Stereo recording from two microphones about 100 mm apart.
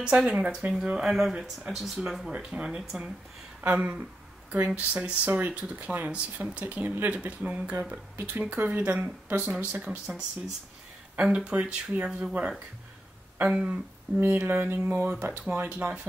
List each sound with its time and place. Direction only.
0.0 s speech: 10° right (ahead or behind)